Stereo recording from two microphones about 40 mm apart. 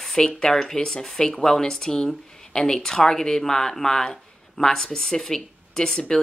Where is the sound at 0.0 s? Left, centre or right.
Centre.